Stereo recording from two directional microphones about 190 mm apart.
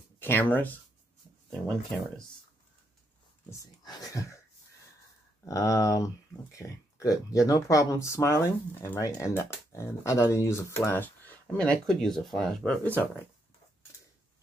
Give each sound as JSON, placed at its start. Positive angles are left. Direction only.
{"t": 0.2, "sound": "speech", "side_deg": 10}
{"t": 3.4, "sound": "speech", "side_deg": 20}
{"t": 5.4, "sound": "speech", "side_deg": 15}